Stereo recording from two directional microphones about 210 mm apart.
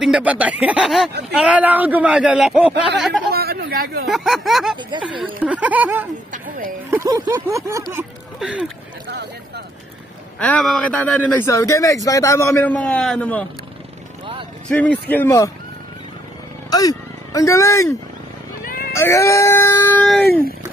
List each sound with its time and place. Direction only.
0.0 s speech: 5° right (ahead or behind)
3.3 s speech: 50° right (ahead or behind)
4.1 s speech: centre (ahead or behind)
6.3 s speech: 40° right (ahead or behind)
7.1 s speech: 15° right (ahead or behind)
8.4 s speech: centre (ahead or behind)
9.0 s speech: 55° right (ahead or behind)
10.4 s speech: 5° left (ahead or behind)
14.7 s speech: 5° left (ahead or behind)
16.7 s speech: 15° left (ahead or behind)
18.6 s a sound: 40° left (ahead or behind)
18.9 s speech: 15° left (ahead or behind)